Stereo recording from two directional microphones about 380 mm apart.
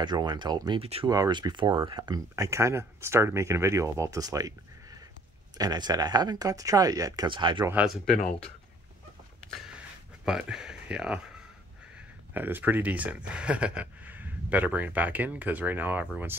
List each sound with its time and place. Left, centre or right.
0.0 s speech: centre
5.6 s speech: centre
9.5 s a sound: centre
12.4 s speech: centre